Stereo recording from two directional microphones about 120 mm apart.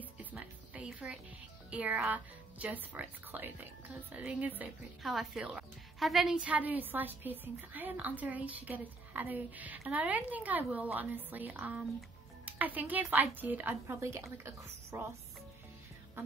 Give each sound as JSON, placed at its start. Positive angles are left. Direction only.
{"t": 0.2, "sound": "a sound", "side_deg": -15}
{"t": 1.7, "sound": "speech", "side_deg": -10}
{"t": 5.0, "sound": "speech", "side_deg": 0}